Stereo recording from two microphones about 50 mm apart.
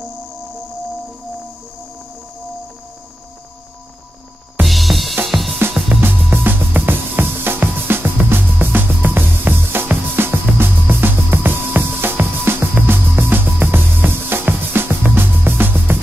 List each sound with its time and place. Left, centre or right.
4.6 s music: centre
5.2 s drum kit: centre
5.9 s music: right